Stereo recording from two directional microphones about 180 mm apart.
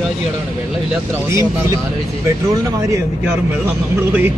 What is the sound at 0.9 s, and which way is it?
Speech, 15° right (ahead or behind).